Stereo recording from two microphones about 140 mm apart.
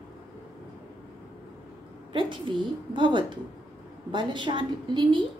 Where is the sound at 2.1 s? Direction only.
35° right (ahead or behind).